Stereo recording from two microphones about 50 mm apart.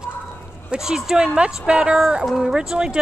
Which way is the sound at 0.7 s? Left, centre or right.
Centre.